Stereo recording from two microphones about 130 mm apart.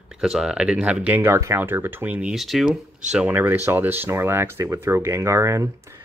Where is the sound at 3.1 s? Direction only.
10° right (ahead or behind).